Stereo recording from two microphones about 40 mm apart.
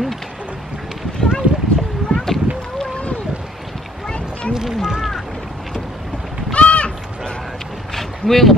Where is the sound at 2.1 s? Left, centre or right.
Centre.